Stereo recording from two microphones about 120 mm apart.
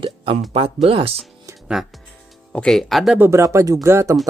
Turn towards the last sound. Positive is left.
turn(degrees=-25)  # may be behind; listen again after turning